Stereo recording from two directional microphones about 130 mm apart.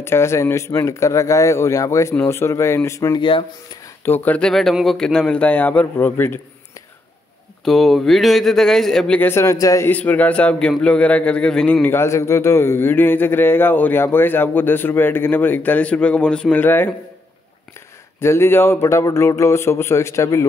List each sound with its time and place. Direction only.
0.0 s speech: 20° left (ahead or behind)
3.2 s speech: 40° left (ahead or behind)
3.8 s a man's voice: 15° left (ahead or behind)
7.6 s speech: centre (ahead or behind)
9.3 s speech: 25° left (ahead or behind)
9.8 s a man's voice: 10° left (ahead or behind)
18.2 s speech: 20° left (ahead or behind)